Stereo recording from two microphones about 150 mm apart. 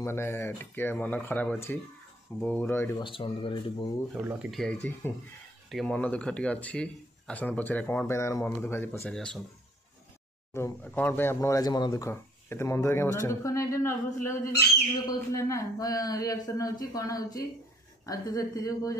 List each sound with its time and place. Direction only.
0.0 s speech: 15° left (ahead or behind)
3.0 s speech: 35° left (ahead or behind)
4.1 s speech: 5° right (ahead or behind); by 9.1 s 15° left (ahead or behind)
9.1 s speech: 5° left (ahead or behind)
10.5 s speech: 15° left (ahead or behind)